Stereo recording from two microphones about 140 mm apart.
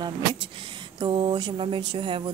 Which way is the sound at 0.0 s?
40° right (ahead or behind).